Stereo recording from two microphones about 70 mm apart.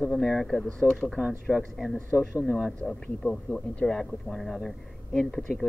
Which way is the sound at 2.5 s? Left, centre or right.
Centre.